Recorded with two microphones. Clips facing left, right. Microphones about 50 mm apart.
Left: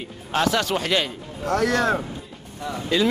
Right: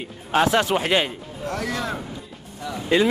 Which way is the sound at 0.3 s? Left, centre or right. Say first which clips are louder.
Right 3 dB; right.